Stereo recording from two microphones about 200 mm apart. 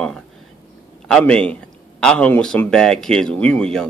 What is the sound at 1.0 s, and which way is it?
Speech, 5° left (ahead or behind).